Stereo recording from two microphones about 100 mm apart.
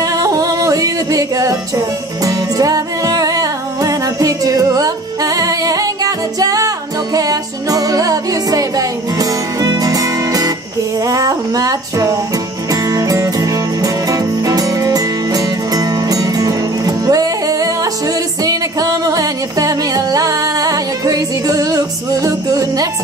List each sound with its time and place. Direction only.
0.0 s yodeling: 35° right (ahead or behind)
2.2 s music: 35° right (ahead or behind)
11.1 s child singing: 35° right (ahead or behind)
12.9 s music: 35° right (ahead or behind)